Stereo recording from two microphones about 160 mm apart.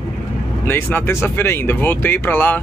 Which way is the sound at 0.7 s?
15° left (ahead or behind).